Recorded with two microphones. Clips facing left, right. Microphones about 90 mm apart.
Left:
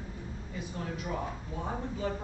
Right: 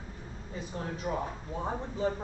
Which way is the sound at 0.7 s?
35° right (ahead or behind).